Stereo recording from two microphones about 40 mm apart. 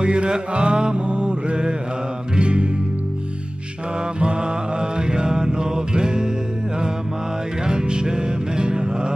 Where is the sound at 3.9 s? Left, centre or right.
Right.